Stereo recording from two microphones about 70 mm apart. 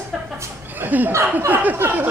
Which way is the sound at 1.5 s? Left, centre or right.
Right.